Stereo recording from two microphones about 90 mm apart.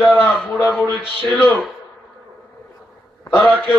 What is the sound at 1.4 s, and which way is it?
Speech, 20° left (ahead or behind).